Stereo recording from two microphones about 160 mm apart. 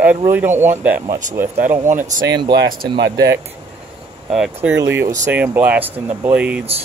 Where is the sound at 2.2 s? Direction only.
25° right (ahead or behind).